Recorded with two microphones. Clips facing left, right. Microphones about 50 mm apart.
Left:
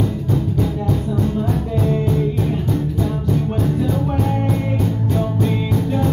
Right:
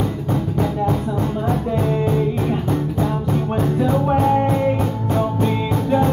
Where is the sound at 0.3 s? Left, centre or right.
Right.